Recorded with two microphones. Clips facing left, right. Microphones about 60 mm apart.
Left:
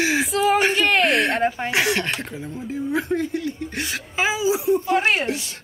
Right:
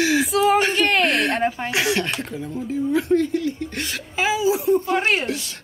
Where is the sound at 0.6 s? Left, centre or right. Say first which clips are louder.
Even; centre.